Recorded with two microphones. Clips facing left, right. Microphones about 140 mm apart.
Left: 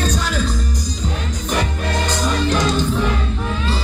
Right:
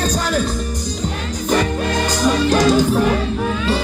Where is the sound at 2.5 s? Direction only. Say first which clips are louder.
Right 5 dB; 40° right (ahead or behind).